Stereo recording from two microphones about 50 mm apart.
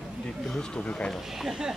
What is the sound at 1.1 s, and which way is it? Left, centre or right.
Speech, centre.